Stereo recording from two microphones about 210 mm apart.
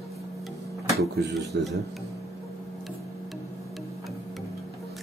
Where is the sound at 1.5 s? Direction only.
55° right (ahead or behind).